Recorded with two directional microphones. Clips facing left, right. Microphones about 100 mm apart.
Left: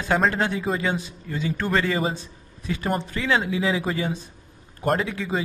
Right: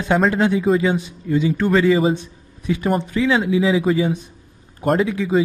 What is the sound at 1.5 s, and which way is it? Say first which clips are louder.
A man's voice: right 6 dB; centre (ahead or behind).